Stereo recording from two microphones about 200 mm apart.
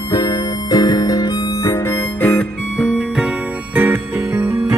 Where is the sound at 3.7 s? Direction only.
10° right (ahead or behind).